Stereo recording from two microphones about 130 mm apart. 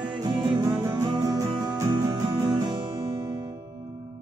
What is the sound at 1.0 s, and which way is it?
Music, 25° right (ahead or behind).